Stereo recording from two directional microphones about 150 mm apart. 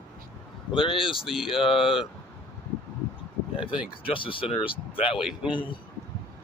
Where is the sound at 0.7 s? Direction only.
35° left (ahead or behind).